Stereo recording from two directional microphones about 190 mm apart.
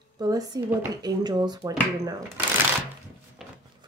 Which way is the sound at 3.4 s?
Centre (ahead or behind).